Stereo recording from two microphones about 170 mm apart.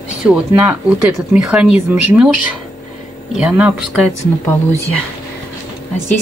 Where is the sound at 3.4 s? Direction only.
5° right (ahead or behind).